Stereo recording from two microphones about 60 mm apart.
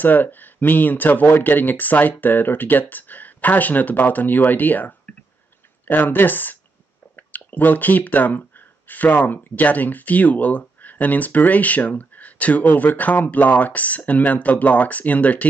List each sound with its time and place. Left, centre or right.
0.0 s speech: left